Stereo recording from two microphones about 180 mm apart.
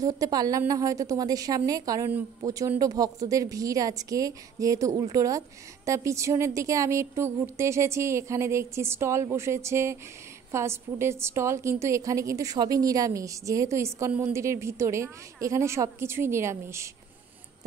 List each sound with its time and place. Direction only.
0.0 s a woman's voice: 20° right (ahead or behind)